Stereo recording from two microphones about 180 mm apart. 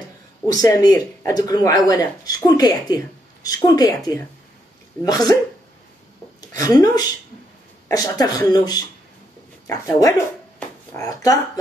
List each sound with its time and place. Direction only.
0.5 s speech: 20° left (ahead or behind)
6.5 s speech: 20° left (ahead or behind)